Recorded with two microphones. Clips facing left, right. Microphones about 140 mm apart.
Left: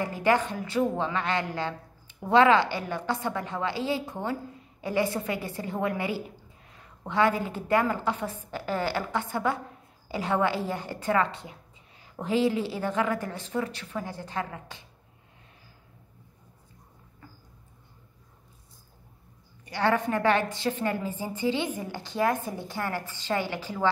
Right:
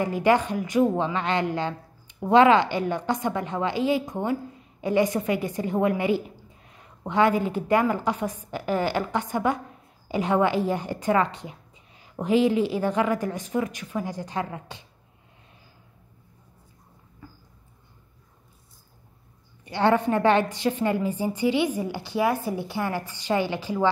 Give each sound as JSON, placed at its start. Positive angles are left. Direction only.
{"t": 0.0, "sound": "a woman's voice", "side_deg": -20}
{"t": 19.6, "sound": "a woman's voice", "side_deg": -20}